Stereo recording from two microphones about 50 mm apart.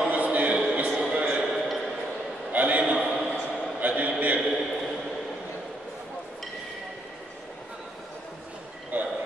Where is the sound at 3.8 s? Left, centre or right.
Right.